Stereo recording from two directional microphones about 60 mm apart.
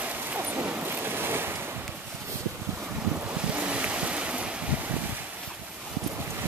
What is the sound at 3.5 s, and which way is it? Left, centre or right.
Boat, right.